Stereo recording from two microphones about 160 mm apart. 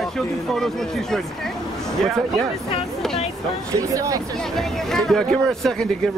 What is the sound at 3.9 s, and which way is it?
Speech, 20° right (ahead or behind).